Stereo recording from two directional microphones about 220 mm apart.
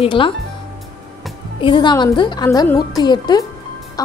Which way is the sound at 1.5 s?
20° left (ahead or behind).